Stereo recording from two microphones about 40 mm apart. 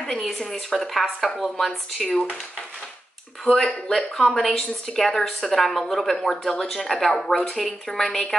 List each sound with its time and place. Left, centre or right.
0.0 s a sound: centre
0.5 s a woman's voice: centre
3.4 s speech: centre
4.6 s speech: centre
5.0 s a woman's voice: centre